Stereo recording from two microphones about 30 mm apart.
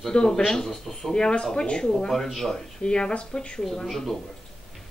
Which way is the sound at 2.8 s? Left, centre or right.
Left.